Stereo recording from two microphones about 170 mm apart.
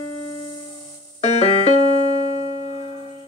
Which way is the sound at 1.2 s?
40° left (ahead or behind).